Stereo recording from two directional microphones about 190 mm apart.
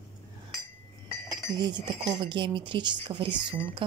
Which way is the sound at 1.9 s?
25° right (ahead or behind).